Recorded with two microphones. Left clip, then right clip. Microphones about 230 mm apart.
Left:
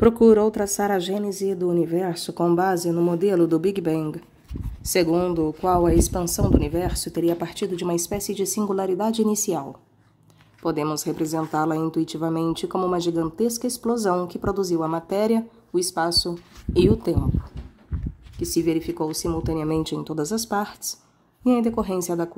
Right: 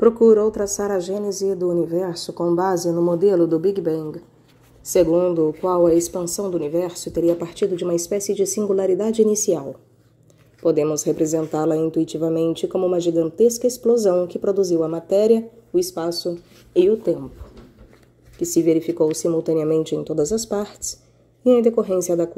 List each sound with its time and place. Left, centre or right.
0.0 s speech: left
2.4 s speech: centre
2.9 s speech: left
3.6 s speech: left
4.8 s speech: centre
18.4 s speech: centre